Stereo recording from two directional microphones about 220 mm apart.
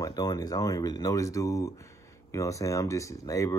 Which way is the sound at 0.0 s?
15° left (ahead or behind).